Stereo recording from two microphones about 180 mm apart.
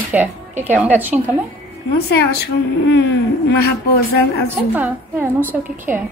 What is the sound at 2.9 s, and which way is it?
A woman's voice, 75° left (ahead or behind).